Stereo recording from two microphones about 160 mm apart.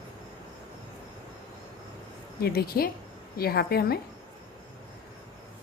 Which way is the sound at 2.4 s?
75° left (ahead or behind).